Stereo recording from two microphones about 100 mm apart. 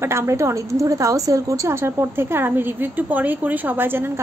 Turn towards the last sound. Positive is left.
turn(degrees=-20)  # may be behind; listen again after turning